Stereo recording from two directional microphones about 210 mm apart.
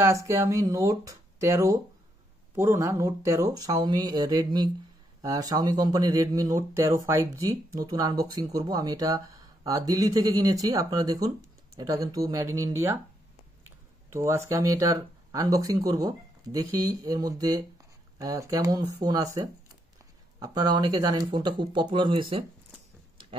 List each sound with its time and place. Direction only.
0.0 s speech: 15° right (ahead or behind)
14.1 s speech: 15° right (ahead or behind)